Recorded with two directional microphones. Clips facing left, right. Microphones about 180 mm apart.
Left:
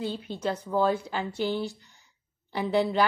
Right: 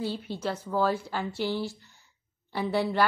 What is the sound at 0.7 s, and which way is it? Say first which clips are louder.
Speech: left 1 dB; 20° left (ahead or behind).